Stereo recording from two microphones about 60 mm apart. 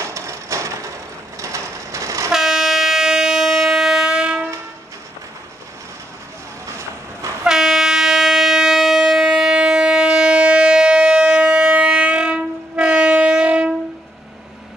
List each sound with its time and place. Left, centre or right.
0.0 s wood: right
1.4 s train: right
2.3 s train: centre
6.6 s vehicle: right
7.4 s a sound: centre